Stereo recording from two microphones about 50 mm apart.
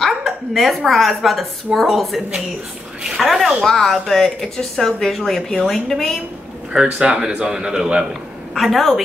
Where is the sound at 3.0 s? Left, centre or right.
Centre.